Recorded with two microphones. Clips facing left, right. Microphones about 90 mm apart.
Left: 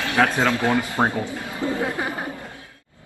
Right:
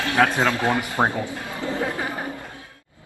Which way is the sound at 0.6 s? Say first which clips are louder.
Left 1 dB; 20° right (ahead or behind).